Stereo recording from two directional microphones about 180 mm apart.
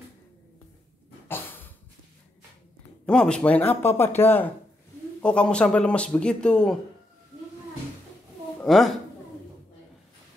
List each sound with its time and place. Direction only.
1.3 s a sound: 10° left (ahead or behind)
3.1 s speech: 5° left (ahead or behind)
8.5 s a woman's voice: centre (ahead or behind)